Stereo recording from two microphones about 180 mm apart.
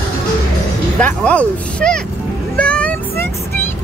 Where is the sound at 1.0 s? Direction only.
10° left (ahead or behind).